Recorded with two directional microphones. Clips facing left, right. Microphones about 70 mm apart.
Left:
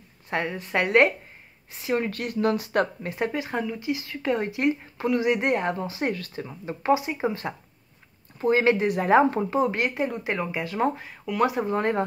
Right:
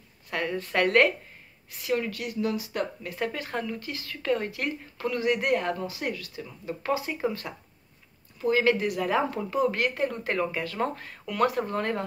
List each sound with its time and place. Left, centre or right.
0.3 s speech: left
2.0 s speech: left
3.0 s speech: left
3.3 s speech: centre
11.1 s speech: centre